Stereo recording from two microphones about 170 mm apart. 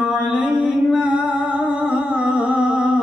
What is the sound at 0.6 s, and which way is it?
Music, 5° right (ahead or behind).